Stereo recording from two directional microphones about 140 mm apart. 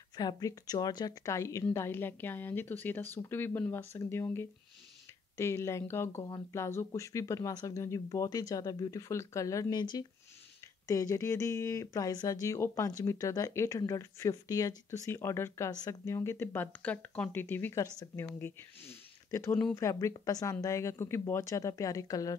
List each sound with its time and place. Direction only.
0.1 s speech: 30° left (ahead or behind)